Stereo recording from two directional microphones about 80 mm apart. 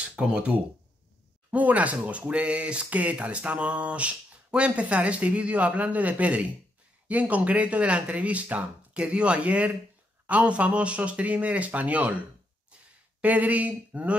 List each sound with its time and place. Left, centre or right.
0.0 s speech: centre
13.2 s speech: centre